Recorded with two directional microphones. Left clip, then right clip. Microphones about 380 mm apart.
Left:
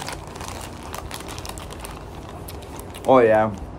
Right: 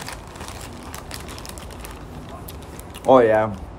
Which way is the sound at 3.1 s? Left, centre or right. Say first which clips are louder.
Right 1 dB; centre.